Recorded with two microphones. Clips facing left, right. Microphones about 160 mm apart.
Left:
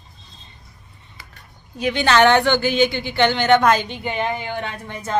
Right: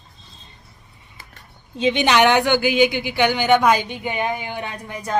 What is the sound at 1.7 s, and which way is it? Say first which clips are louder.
Speech: even; 20° right (ahead or behind).